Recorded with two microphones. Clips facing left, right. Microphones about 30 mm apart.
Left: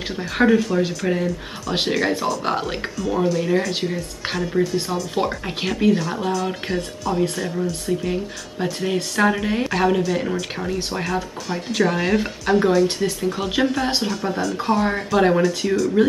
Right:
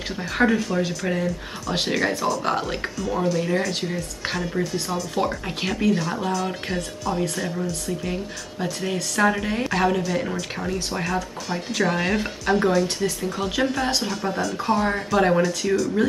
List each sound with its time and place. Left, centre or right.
0.4 s speech: centre
5.1 s speech: centre
13.8 s speech: centre
14.2 s speech: centre